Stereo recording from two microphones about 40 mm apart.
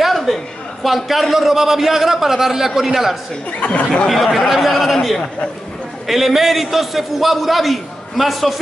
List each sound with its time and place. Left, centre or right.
0.0 s a sound: centre
0.8 s a man's voice: centre
3.5 s speech: left
4.1 s a man's voice: centre